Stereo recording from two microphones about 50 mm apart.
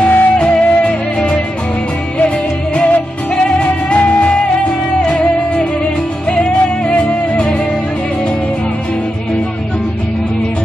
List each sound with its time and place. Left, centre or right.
0.0 s music: left
0.4 s music: left